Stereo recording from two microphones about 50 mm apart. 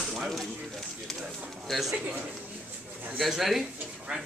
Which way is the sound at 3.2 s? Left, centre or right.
Centre.